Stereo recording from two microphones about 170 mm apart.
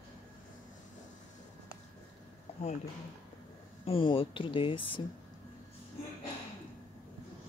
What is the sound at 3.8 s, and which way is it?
Speech, 30° left (ahead or behind).